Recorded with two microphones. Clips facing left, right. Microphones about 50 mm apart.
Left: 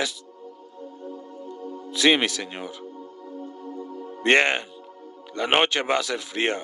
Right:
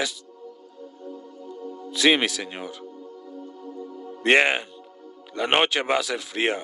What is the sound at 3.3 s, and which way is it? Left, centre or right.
Music, left.